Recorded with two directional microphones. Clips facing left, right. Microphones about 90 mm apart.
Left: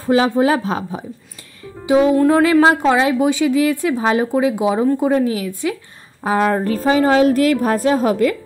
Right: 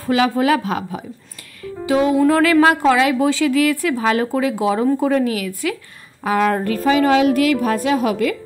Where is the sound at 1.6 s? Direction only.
20° left (ahead or behind).